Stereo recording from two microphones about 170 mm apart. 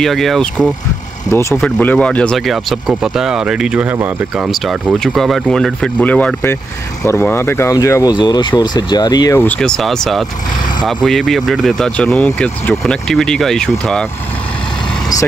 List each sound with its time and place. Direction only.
0.0 s speech: centre (ahead or behind); by 9.4 s 25° left (ahead or behind)
9.4 s speech: 5° left (ahead or behind)